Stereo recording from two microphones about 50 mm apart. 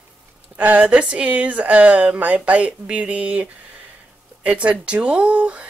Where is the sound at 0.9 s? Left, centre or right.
Centre.